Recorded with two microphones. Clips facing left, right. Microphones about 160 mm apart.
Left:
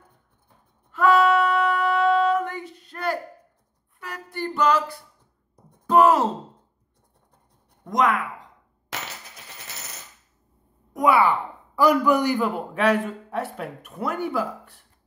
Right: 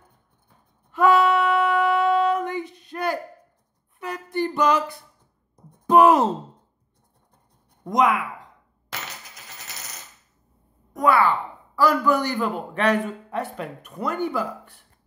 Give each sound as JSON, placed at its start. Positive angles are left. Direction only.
{"t": 0.9, "sound": "female singing", "side_deg": -15}
{"t": 4.0, "sound": "music", "side_deg": -20}
{"t": 5.9, "sound": "sigh", "side_deg": -15}
{"t": 7.8, "sound": "speech", "side_deg": -15}
{"t": 10.9, "sound": "speech", "side_deg": 10}